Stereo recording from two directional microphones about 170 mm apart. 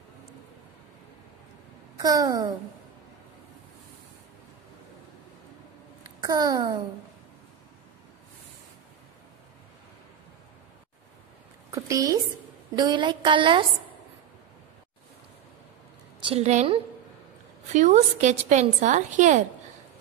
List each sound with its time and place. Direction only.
2.0 s a woman's voice: 20° right (ahead or behind)
6.2 s a woman's voice: 20° right (ahead or behind)
11.7 s a woman's voice: 20° right (ahead or behind)
16.2 s a woman's voice: 35° right (ahead or behind)